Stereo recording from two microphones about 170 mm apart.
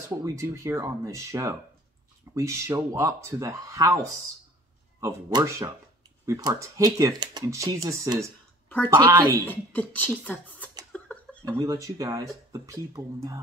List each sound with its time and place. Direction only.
0.2 s speech: 15° right (ahead or behind)
5.0 s speech: 15° right (ahead or behind)
8.6 s a sound: 10° left (ahead or behind)
9.5 s speech: 10° left (ahead or behind)
10.9 s a sound: 10° left (ahead or behind)
11.4 s speech: 20° right (ahead or behind)